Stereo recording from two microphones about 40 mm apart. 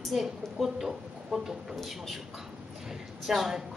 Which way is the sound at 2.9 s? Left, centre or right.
Centre.